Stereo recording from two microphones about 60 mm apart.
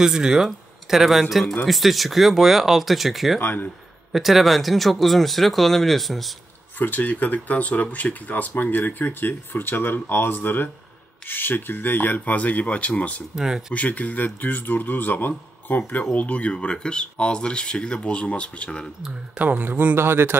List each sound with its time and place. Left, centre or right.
0.0 s speech: centre
3.3 s speech: left
4.1 s speech: centre
6.8 s speech: left
13.4 s speech: centre
13.7 s speech: left
19.3 s speech: right